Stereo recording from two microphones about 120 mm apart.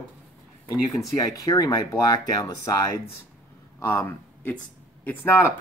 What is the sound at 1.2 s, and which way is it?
Speech, 30° left (ahead or behind).